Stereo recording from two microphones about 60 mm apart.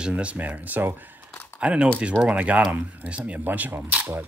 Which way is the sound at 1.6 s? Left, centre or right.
Centre.